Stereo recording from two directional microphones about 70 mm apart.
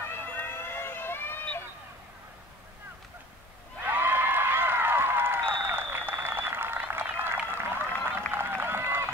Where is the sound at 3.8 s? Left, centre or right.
Right.